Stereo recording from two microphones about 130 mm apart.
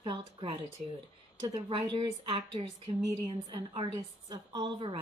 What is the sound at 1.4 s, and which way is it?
Speech, 35° right (ahead or behind).